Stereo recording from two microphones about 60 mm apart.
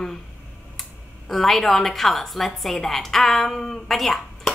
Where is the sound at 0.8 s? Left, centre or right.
Centre.